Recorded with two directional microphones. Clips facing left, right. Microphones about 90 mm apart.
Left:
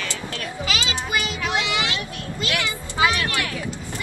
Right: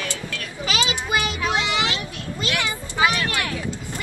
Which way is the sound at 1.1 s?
20° right (ahead or behind).